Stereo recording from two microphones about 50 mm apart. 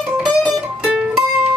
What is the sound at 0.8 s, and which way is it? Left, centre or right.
Music, centre.